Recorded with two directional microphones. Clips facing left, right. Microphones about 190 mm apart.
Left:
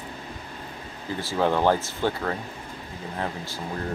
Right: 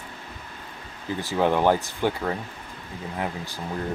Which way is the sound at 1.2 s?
15° right (ahead or behind).